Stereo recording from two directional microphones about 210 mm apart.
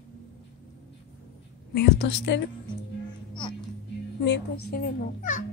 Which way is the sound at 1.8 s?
50° left (ahead or behind).